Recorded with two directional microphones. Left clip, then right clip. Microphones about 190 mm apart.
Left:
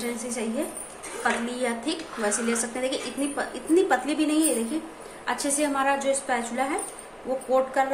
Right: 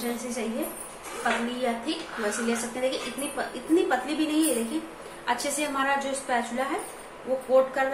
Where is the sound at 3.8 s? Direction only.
25° left (ahead or behind).